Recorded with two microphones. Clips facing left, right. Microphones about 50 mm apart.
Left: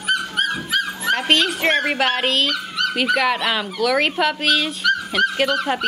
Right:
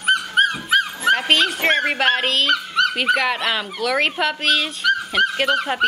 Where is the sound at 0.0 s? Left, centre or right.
Right.